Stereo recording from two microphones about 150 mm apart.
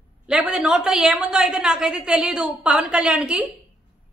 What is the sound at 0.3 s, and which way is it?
A woman's voice, 5° right (ahead or behind).